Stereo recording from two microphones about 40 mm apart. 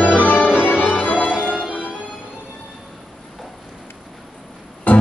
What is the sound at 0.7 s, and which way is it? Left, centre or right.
Organ, left.